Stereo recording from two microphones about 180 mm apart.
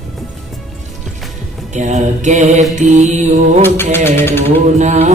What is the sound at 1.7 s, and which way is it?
Mantra, 40° right (ahead or behind).